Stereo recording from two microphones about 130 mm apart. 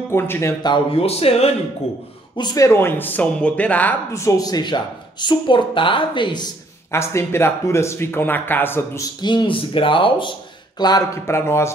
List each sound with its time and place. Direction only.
0.1 s speech: 20° left (ahead or behind)
0.6 s speech: 40° left (ahead or behind)
2.3 s speech: 30° left (ahead or behind); by 4.0 s 10° left (ahead or behind)
4.1 s speech: 25° left (ahead or behind)
6.9 s speech: 20° left (ahead or behind)
9.2 s speech: 35° left (ahead or behind)
11.2 s speech: 20° left (ahead or behind)